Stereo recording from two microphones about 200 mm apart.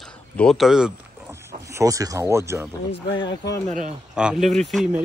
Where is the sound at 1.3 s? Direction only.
15° right (ahead or behind).